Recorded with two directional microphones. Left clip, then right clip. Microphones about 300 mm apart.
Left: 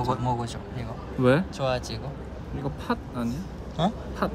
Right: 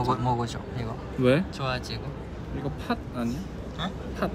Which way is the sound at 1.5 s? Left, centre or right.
Centre.